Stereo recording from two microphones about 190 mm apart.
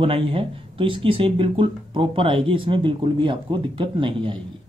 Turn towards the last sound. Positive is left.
turn(degrees=-25)  # may be behind; listen again after turning